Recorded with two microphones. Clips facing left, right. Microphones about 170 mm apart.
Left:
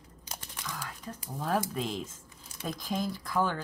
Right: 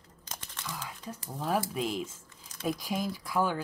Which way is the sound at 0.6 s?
10° right (ahead or behind).